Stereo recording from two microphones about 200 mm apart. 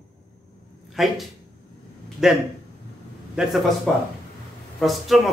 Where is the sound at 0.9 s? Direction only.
Centre (ahead or behind).